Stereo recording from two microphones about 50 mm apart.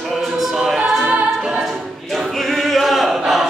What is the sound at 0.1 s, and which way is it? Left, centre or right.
A capella, centre.